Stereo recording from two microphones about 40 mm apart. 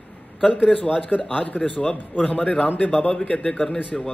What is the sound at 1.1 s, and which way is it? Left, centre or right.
Speech, left.